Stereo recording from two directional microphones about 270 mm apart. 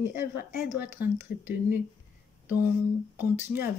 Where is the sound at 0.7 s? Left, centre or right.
Centre.